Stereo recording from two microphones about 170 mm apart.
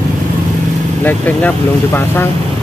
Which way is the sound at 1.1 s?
10° left (ahead or behind).